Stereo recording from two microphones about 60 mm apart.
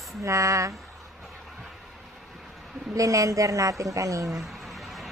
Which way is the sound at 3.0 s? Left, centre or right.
Right.